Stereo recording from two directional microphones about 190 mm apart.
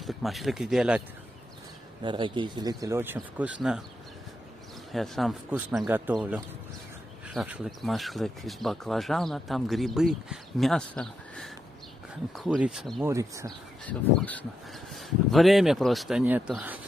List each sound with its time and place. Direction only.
0.0 s speech: centre (ahead or behind)
2.0 s speech: 25° right (ahead or behind); by 3.5 s 10° right (ahead or behind)
4.9 s speech: centre (ahead or behind)
13.0 s speech: 15° right (ahead or behind)
13.5 s speech: 10° left (ahead or behind)